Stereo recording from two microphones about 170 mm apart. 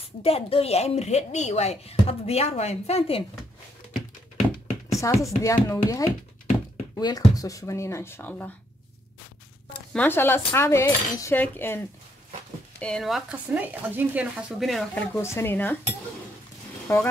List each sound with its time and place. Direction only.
0.2 s speech: 35° left (ahead or behind)
4.9 s speech: 20° left (ahead or behind)
7.0 s cutlery: 25° left (ahead or behind)
9.9 s cutlery: 10° left (ahead or behind)
12.7 s speech: 5° left (ahead or behind)
15.1 s cutlery: 15° left (ahead or behind)
16.8 s speech: 10° left (ahead or behind)